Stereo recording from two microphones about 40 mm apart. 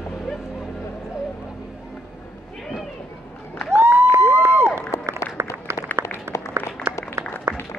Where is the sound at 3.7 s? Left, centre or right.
Right.